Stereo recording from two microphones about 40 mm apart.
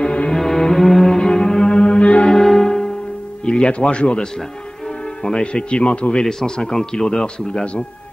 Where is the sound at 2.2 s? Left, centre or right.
Centre; by 4.3 s left.